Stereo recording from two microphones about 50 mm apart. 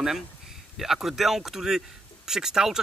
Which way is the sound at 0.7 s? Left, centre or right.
Centre.